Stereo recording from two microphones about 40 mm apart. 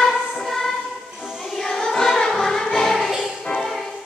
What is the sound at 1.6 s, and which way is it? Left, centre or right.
Choir, centre.